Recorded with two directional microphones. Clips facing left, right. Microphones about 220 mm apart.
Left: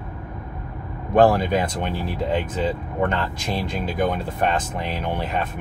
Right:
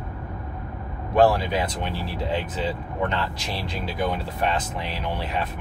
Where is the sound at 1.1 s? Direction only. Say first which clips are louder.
Left 3 dB; 50° left (ahead or behind).